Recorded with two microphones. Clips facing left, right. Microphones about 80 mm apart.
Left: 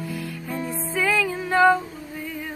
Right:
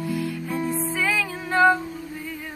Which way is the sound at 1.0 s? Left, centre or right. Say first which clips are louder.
Left 7 dB; centre.